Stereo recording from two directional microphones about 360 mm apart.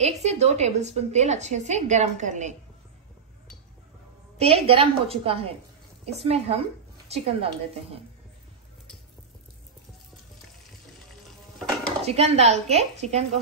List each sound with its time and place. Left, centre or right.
0.0 s a woman's voice: centre
4.4 s a woman's voice: centre
11.8 s speech: centre